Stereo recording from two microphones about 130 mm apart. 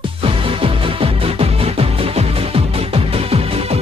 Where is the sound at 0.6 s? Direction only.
45° right (ahead or behind).